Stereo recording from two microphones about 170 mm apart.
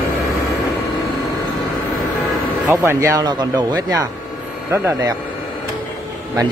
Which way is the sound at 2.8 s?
20° right (ahead or behind).